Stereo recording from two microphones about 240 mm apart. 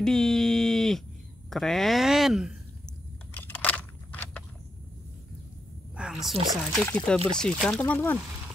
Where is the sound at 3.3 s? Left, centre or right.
Centre.